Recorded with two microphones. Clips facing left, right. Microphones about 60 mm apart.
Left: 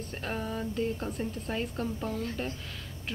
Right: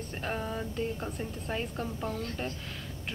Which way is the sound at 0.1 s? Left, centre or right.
Centre.